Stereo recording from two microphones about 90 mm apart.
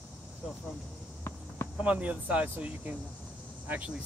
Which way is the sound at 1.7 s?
15° right (ahead or behind).